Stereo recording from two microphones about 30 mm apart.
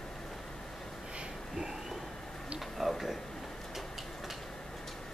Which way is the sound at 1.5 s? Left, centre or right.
Right.